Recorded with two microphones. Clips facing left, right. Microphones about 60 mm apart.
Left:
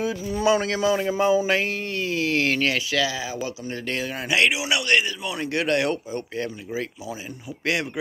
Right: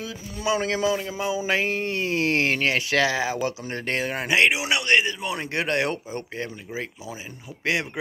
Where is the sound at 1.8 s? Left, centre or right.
Right.